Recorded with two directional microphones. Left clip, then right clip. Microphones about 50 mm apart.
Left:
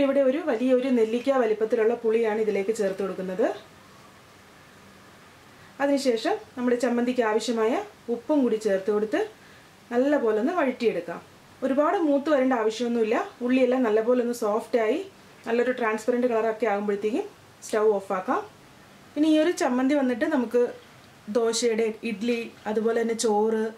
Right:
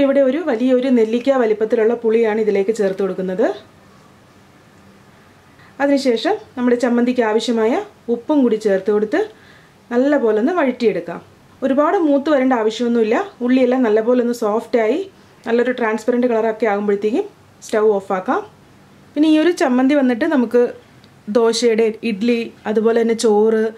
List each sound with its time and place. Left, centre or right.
0.0 s speech: right
5.8 s a woman's voice: right
8.6 s speech: centre
18.0 s speech: right